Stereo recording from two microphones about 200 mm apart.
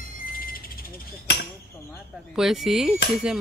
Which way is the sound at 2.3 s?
Centre (ahead or behind).